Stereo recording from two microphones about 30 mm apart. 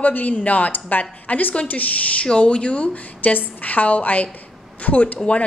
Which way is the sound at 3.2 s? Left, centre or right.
Left.